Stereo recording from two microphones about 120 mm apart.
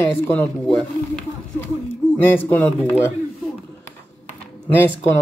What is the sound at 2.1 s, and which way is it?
Speech, 15° left (ahead or behind).